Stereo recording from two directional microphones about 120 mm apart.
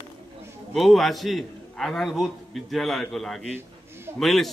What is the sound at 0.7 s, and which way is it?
A man's voice, centre (ahead or behind).